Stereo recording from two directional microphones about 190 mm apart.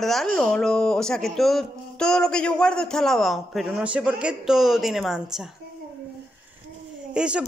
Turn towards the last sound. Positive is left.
turn(degrees=-5)  # may be behind; listen again after turning